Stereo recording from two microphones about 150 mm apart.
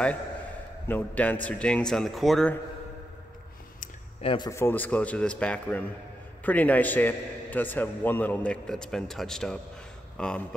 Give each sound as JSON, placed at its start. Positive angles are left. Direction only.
{"t": 0.8, "sound": "a man's voice", "side_deg": 10}
{"t": 4.2, "sound": "a man's voice", "side_deg": 35}
{"t": 4.5, "sound": "a man's voice", "side_deg": 15}